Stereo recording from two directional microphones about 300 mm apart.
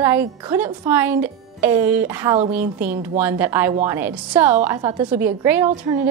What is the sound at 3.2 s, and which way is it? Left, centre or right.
A woman's voice, centre.